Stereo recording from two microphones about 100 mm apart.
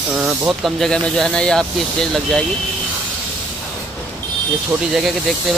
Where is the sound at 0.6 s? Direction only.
5° left (ahead or behind).